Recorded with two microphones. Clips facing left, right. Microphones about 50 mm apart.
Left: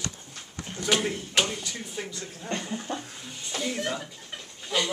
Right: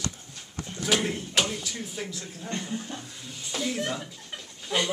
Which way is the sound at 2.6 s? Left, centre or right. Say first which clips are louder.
Even; centre.